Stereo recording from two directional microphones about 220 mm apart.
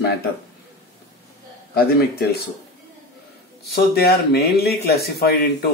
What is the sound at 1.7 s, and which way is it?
Speech, 45° left (ahead or behind).